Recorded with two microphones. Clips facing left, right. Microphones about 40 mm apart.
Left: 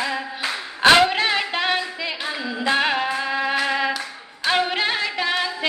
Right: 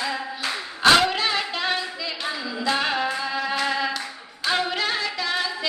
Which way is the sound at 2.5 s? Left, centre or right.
Left.